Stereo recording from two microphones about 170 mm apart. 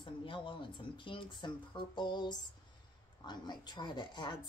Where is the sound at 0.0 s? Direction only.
30° left (ahead or behind).